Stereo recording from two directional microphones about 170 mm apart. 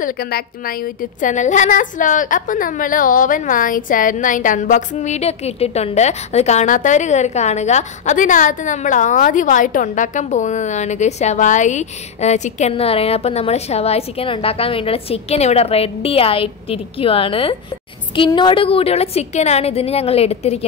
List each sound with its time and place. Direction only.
0.0 s a woman's voice: 60° left (ahead or behind)
1.2 s a woman's voice: 45° left (ahead or behind)